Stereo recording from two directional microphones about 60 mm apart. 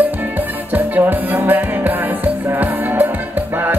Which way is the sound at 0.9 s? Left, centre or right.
Right.